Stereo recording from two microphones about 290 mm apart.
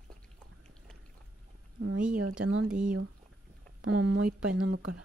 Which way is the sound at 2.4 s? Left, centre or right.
Right.